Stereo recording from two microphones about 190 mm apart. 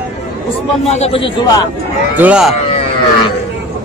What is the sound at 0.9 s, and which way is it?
Speech, 35° left (ahead or behind).